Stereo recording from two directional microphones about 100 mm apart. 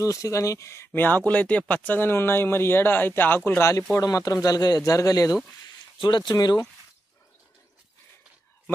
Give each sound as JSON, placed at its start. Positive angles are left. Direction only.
{"t": 0.0, "sound": "speech", "side_deg": 30}
{"t": 4.0, "sound": "speech", "side_deg": 35}
{"t": 5.9, "sound": "speech", "side_deg": 50}